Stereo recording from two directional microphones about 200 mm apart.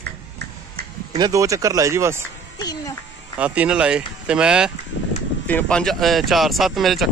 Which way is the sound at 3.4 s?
5° right (ahead or behind).